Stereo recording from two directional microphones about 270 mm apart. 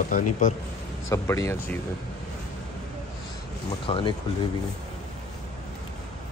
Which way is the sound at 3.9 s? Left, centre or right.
Centre.